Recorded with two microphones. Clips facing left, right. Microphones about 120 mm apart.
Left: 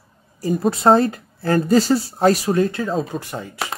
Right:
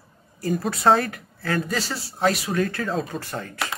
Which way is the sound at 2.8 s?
5° left (ahead or behind).